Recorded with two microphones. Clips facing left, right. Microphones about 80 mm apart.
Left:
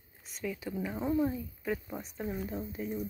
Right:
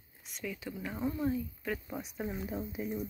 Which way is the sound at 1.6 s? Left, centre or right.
Centre.